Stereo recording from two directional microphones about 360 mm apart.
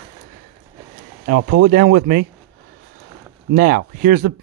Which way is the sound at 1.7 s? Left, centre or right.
Right.